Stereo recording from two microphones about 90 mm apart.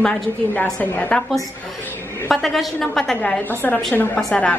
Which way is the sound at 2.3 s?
Centre (ahead or behind).